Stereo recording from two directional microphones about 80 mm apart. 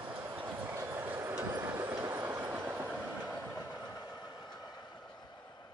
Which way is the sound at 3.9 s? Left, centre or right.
Left.